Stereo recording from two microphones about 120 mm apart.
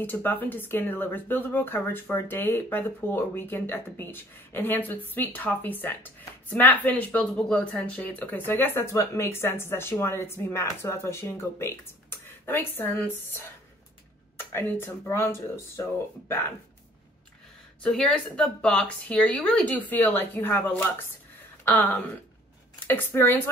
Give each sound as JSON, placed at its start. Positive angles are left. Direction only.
{"t": 0.0, "sound": "speech", "side_deg": 15}
{"t": 17.8, "sound": "speech", "side_deg": 10}